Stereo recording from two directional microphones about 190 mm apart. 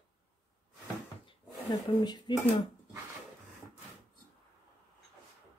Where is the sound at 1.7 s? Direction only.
20° left (ahead or behind).